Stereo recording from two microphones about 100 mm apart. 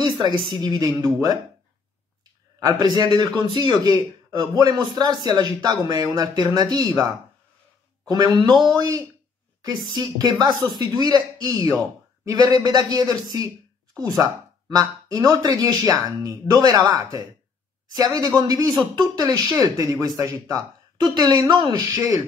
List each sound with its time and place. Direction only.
0.0 s speech: 50° right (ahead or behind)
2.6 s a man's voice: 45° right (ahead or behind)
8.1 s a man's voice: 45° right (ahead or behind)
16.8 s speech: 20° right (ahead or behind)
17.9 s speech: 40° right (ahead or behind)